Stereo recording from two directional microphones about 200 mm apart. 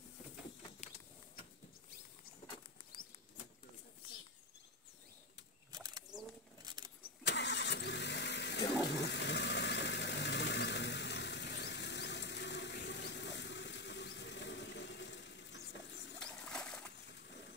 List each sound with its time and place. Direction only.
5.7 s a sound: 20° right (ahead or behind)
7.0 s vehicle: 60° left (ahead or behind)
16.2 s pigeon: 5° left (ahead or behind)